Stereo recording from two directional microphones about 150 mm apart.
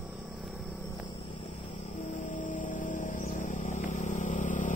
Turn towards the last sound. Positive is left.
turn(degrees=55)  # may be behind; listen again after turning